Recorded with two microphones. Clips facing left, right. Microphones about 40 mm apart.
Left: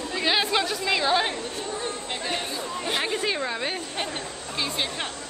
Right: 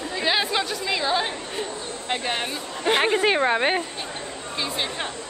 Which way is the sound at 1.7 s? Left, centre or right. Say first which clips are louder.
Left 3 dB; left.